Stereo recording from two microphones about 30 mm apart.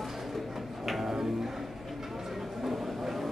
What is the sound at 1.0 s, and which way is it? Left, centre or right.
Music, centre.